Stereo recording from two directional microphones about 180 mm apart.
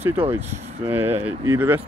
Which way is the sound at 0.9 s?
10° right (ahead or behind).